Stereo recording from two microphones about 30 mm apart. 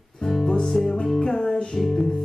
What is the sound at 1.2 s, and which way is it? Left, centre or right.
Music, left.